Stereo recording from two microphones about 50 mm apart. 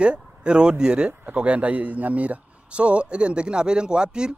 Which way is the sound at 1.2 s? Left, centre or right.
Right.